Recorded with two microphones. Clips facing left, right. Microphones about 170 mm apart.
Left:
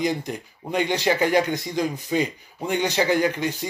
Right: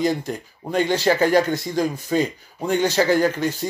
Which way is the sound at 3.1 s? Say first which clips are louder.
Right 3 dB; 45° right (ahead or behind).